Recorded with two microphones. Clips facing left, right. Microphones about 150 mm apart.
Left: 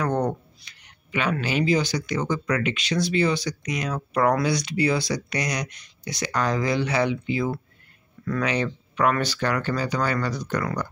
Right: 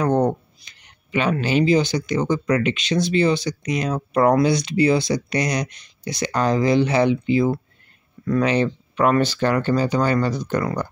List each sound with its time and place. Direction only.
0.0 s speech: 20° right (ahead or behind)